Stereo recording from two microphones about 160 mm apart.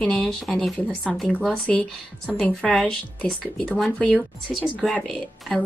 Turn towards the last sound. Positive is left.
turn(degrees=0)  # may be behind; listen again after turning